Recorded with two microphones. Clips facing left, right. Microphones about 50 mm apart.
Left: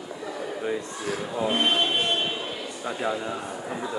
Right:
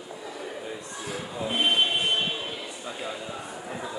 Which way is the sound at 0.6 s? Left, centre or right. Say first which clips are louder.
Left 7 dB; left.